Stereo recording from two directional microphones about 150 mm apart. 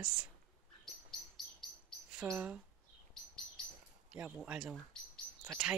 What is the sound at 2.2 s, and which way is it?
Speech, 10° right (ahead or behind).